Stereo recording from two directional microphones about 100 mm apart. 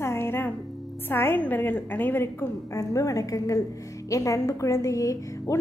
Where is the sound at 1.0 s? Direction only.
20° left (ahead or behind).